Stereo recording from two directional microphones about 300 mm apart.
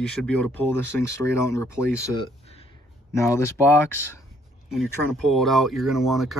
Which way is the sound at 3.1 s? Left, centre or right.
Centre.